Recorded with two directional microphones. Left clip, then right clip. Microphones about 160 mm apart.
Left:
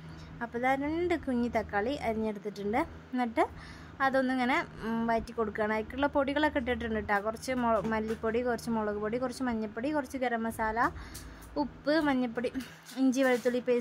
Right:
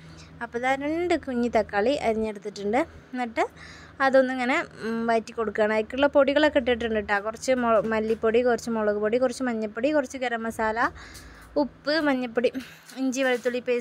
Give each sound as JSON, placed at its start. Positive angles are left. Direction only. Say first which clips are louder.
{"t": 0.4, "sound": "a woman's voice", "louder": "right 4 dB", "side_deg": -30}
{"t": 4.7, "sound": "speech", "louder": "right 6 dB", "side_deg": -15}
{"t": 5.1, "sound": "a woman's voice", "louder": "right 7 dB", "side_deg": -25}